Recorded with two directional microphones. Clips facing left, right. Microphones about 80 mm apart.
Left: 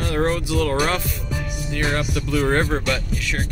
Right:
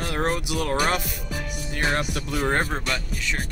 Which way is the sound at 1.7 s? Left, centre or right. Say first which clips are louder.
Left 2 dB; right.